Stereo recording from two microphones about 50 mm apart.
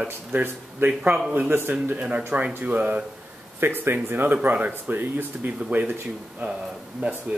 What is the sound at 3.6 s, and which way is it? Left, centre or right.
Speech, right.